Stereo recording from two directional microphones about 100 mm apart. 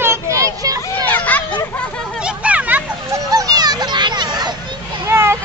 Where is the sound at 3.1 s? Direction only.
35° right (ahead or behind).